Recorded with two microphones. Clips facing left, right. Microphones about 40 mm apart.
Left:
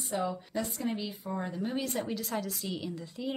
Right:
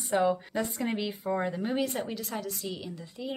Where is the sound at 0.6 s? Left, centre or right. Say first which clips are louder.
Right 3 dB; right.